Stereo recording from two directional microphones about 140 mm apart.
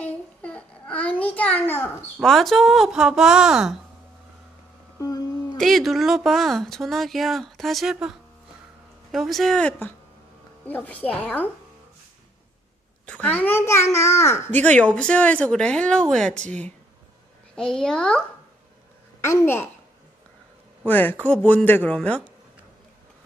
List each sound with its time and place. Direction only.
0.0 s a sound: 10° left (ahead or behind)
2.1 s speech: centre (ahead or behind)
4.9 s a sound: 25° left (ahead or behind)
5.6 s a child's voice: centre (ahead or behind)
13.0 s a child's voice: 10° left (ahead or behind)
19.2 s a child's voice: 20° left (ahead or behind)
20.8 s a child's voice: 15° left (ahead or behind)